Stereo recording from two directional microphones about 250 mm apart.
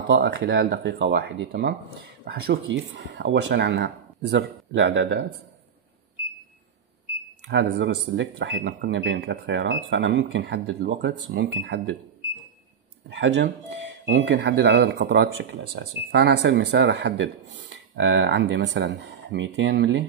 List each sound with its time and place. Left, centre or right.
0.0 s speech: right
7.4 s speech: right
13.1 s speech: right